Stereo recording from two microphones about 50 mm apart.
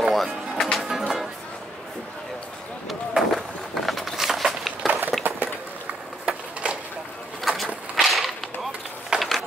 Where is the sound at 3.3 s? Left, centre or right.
Centre.